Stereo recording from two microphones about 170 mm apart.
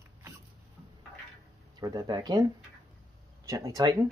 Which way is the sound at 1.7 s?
25° right (ahead or behind).